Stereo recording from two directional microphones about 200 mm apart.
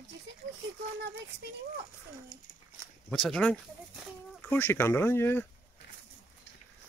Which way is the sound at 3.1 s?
5° left (ahead or behind).